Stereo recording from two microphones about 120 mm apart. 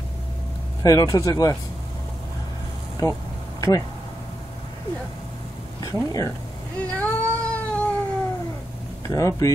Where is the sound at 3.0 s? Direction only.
35° left (ahead or behind).